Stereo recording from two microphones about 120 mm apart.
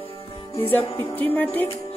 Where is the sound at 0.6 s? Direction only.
20° left (ahead or behind).